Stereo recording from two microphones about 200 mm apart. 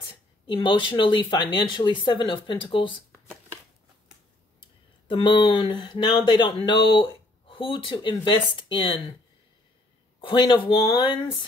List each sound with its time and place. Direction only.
0.0 s a woman's voice: 25° left (ahead or behind)
5.0 s speech: 25° left (ahead or behind)
10.2 s speech: 25° left (ahead or behind)